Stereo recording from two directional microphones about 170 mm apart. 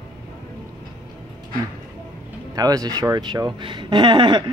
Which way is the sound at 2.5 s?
20° right (ahead or behind).